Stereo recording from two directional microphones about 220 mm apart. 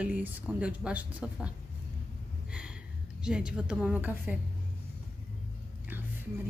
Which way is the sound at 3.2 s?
5° right (ahead or behind).